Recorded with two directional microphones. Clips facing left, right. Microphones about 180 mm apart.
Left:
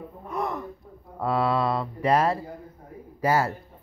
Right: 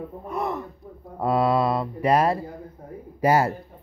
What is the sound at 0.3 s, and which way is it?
Speech, 10° right (ahead or behind).